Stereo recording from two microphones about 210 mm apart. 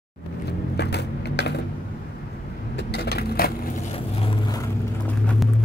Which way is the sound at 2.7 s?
50° left (ahead or behind).